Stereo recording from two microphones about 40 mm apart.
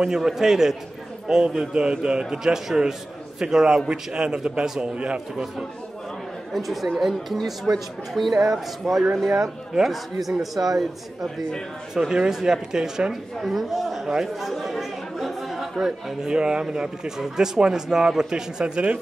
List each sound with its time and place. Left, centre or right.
0.1 s a man's voice: centre
6.5 s a man's voice: centre
12.1 s a man's voice: centre
13.1 s a man's voice: centre
14.4 s chatter: centre
16.2 s speech: centre